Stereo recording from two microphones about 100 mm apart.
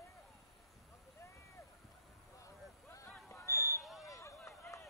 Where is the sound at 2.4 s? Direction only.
30° left (ahead or behind).